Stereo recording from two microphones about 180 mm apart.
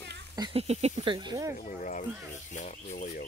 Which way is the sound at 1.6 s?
45° left (ahead or behind).